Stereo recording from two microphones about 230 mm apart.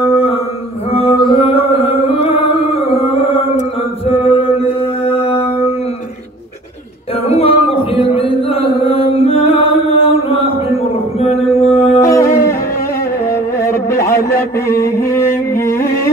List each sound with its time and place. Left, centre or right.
0.9 s music: left
7.2 s chant: left
12.0 s howl: centre
13.3 s music: centre